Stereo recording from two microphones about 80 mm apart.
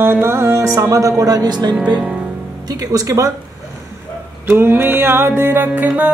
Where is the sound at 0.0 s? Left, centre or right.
Right.